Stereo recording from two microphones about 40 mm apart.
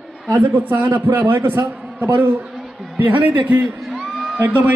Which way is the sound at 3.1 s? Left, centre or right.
Right.